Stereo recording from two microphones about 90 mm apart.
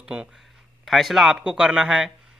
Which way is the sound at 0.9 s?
Centre (ahead or behind).